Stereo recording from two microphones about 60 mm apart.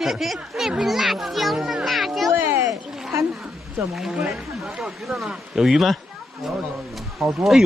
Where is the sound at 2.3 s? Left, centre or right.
Right.